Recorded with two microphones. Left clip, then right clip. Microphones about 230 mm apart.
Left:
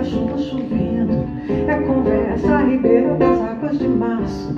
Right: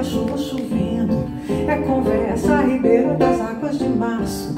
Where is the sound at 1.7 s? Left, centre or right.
Right.